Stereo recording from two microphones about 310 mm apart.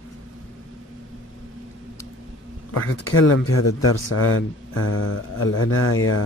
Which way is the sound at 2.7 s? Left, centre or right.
Left.